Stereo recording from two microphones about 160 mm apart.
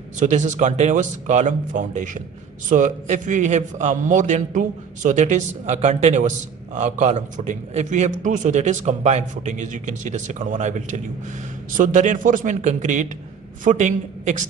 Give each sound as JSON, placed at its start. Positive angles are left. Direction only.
{"t": 0.2, "sound": "a man's voice", "side_deg": -50}